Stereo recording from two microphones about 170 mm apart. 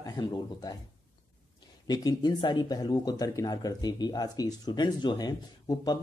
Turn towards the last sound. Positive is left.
turn(degrees=25)  # may be behind; listen again after turning